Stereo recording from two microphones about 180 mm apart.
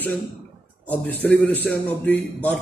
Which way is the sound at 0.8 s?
10° left (ahead or behind).